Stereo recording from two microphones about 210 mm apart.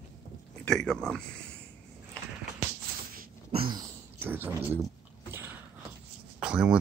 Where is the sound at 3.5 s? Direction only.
25° right (ahead or behind).